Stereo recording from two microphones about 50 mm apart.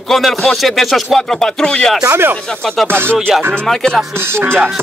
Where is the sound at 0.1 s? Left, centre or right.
Centre.